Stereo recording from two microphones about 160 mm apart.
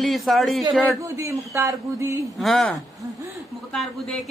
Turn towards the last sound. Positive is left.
turn(degrees=0)  # may be behind; listen again after turning